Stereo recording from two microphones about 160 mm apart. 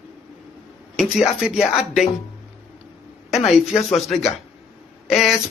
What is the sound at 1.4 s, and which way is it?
Speech, 5° right (ahead or behind).